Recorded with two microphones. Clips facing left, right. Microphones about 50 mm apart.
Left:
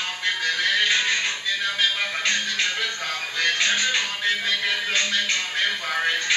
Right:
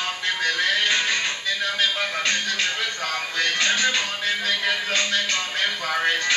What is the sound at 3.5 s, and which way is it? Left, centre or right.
Music, centre.